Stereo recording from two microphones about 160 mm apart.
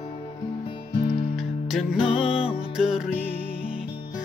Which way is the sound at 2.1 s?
35° left (ahead or behind).